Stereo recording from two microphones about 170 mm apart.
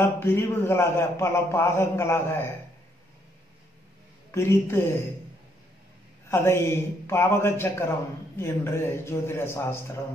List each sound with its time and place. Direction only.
0.0 s a man's voice: 15° left (ahead or behind)
4.3 s a man's voice: 15° left (ahead or behind)
6.2 s a man's voice: 15° left (ahead or behind)